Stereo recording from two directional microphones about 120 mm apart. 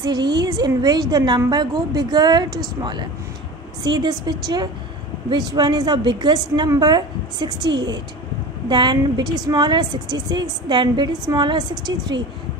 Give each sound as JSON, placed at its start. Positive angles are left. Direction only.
{"t": 0.0, "sound": "a woman's voice", "side_deg": -40}